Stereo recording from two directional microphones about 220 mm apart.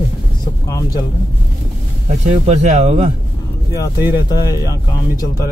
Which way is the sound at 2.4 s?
30° right (ahead or behind).